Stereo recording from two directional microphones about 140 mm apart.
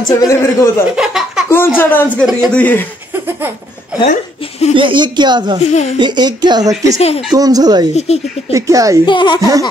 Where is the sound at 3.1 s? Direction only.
15° right (ahead or behind).